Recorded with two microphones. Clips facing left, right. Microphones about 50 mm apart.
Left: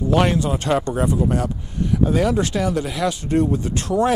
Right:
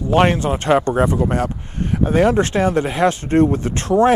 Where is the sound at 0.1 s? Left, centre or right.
Right.